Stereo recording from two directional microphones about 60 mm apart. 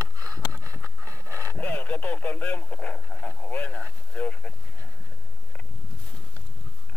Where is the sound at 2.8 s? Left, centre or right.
Centre.